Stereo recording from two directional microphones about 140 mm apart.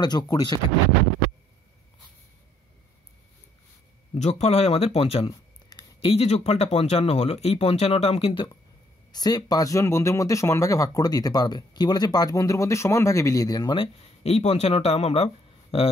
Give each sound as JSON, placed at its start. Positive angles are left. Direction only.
{"t": 0.0, "sound": "speech", "side_deg": 30}
{"t": 4.1, "sound": "speech", "side_deg": 50}
{"t": 5.3, "sound": "a sound", "side_deg": 30}
{"t": 5.9, "sound": "speech", "side_deg": 45}
{"t": 9.1, "sound": "speech", "side_deg": 30}
{"t": 14.2, "sound": "speech", "side_deg": 50}